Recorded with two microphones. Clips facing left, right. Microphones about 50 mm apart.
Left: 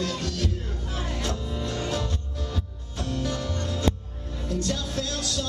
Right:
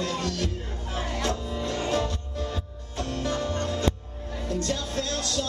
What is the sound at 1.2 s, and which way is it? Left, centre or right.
Music, centre.